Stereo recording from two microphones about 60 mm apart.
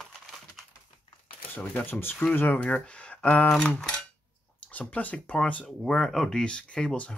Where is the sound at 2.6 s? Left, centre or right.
Centre.